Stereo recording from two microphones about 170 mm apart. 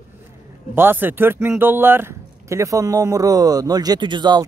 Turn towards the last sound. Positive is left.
turn(degrees=-25)  # may be behind; listen again after turning